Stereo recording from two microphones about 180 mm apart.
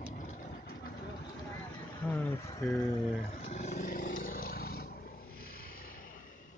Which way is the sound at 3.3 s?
40° left (ahead or behind).